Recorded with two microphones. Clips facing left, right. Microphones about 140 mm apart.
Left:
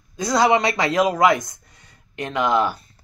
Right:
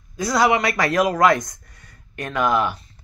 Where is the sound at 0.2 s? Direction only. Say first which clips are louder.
Left 1 dB; 25° left (ahead or behind).